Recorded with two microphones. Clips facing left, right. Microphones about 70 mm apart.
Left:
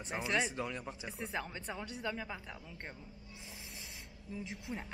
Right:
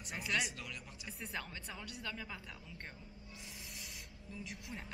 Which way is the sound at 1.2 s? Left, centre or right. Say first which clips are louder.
Left 5 dB; centre.